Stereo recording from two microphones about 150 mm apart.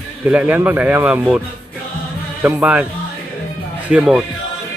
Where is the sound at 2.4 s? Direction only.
10° right (ahead or behind).